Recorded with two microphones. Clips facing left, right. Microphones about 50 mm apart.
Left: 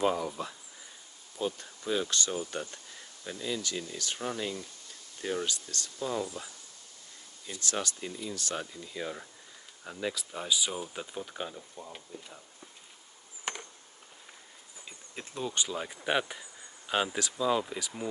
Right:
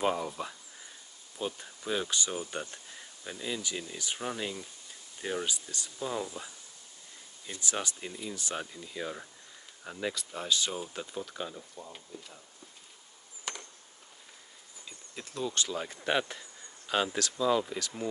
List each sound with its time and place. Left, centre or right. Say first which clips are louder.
0.0 s speech: left 1 dB; centre
7.6 s speech: left 1 dB; centre
8.7 s speech: even; centre
13.5 s a sound: left 3 dB; left
14.9 s speech: left 1 dB; left